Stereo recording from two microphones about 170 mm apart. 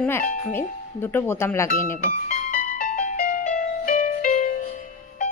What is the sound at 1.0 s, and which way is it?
Speech, 15° left (ahead or behind).